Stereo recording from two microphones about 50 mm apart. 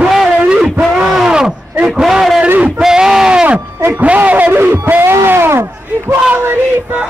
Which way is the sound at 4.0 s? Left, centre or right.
Right.